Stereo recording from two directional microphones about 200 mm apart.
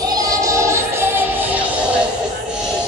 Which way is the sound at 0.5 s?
15° right (ahead or behind).